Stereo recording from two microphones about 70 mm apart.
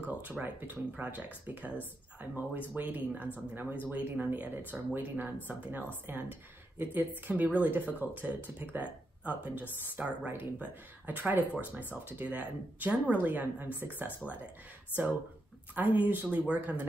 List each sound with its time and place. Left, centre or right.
0.1 s speech: right
2.7 s speech: right
15.7 s speech: right